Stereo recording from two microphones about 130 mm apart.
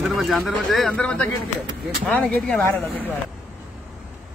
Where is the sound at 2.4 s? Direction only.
Centre (ahead or behind).